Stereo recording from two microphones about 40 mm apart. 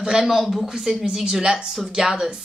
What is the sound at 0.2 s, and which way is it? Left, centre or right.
A woman's voice, centre.